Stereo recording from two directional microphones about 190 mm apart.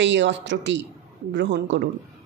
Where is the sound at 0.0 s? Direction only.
70° right (ahead or behind).